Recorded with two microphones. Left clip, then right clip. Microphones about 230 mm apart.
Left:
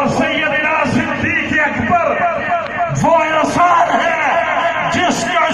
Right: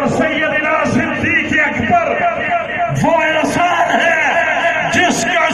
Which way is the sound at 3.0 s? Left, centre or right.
Centre.